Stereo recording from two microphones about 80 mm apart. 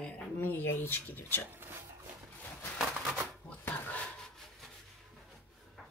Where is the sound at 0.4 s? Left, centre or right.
Left.